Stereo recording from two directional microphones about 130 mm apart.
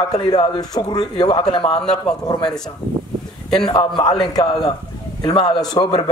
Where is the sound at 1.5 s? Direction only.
45° left (ahead or behind).